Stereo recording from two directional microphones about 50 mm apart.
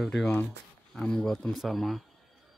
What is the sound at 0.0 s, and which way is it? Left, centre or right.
Speech, centre.